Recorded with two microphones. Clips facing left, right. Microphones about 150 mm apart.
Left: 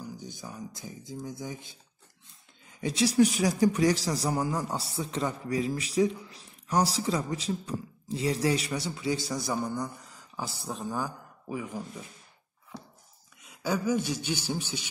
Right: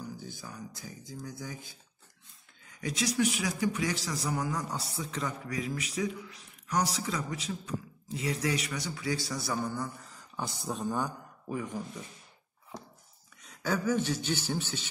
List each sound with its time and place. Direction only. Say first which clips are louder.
0.0 s a man's voice: left 1 dB; 20° left (ahead or behind)
13.4 s speech: left 2 dB; 10° left (ahead or behind)